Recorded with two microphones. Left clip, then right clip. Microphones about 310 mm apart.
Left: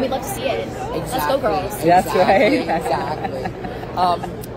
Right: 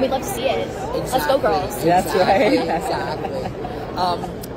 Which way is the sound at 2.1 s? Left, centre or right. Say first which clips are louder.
Left 1 dB; left.